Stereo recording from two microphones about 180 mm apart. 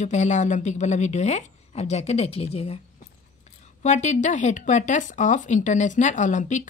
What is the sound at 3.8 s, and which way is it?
Speech, 40° left (ahead or behind).